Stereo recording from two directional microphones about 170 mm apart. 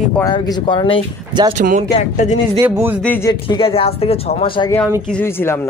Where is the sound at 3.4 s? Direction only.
30° left (ahead or behind).